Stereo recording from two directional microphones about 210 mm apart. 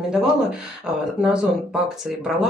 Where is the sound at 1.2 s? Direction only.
5° right (ahead or behind).